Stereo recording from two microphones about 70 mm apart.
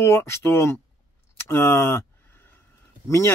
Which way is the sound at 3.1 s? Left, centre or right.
Left.